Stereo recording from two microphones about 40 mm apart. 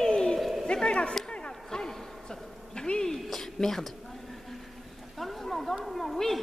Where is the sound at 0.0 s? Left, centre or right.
Centre.